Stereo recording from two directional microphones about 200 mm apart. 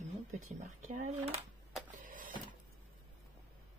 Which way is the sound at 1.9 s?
40° right (ahead or behind).